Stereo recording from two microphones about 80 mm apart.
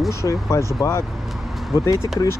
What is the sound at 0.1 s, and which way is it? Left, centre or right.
Speech, left.